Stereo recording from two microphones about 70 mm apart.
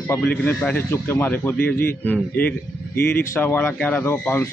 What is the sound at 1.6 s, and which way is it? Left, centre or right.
Speech, left.